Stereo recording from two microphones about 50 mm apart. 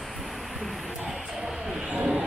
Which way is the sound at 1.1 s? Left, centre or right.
Centre.